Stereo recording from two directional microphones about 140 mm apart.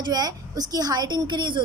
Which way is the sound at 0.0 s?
30° right (ahead or behind).